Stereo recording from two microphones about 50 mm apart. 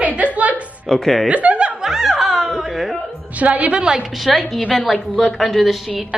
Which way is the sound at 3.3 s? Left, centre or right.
Right.